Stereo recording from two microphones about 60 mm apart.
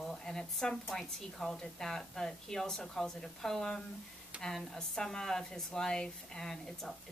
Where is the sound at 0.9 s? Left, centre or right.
Centre.